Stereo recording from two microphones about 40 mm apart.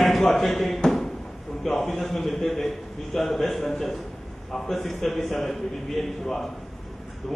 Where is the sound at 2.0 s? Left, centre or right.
Centre.